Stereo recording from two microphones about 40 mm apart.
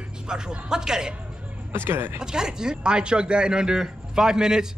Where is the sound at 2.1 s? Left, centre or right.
Centre.